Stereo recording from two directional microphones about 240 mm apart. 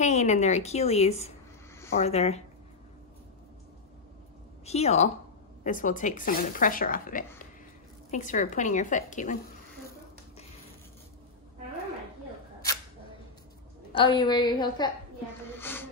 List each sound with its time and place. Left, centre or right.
0.0 s a woman's voice: left
4.6 s a woman's voice: left
13.9 s a woman's voice: centre
15.5 s a sound: centre